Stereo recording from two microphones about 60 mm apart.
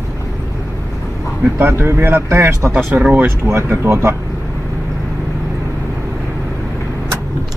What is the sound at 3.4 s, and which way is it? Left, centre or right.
Speech, right.